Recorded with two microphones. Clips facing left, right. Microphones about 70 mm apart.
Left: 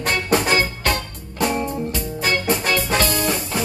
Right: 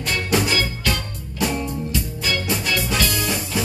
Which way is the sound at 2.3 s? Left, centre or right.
Left.